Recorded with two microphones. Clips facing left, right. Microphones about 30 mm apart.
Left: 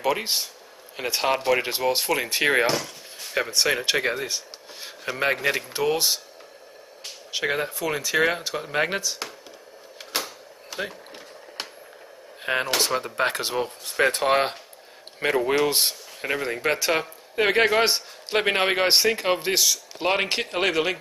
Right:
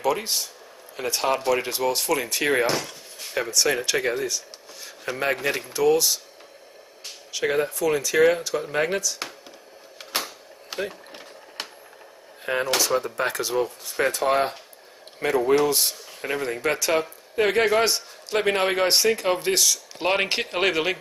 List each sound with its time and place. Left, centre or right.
0.0 s a man's voice: left
5.7 s speech: left
7.4 s speech: centre
10.7 s a sound: right
12.5 s speech: left
14.1 s speech: left
16.2 s a man's voice: centre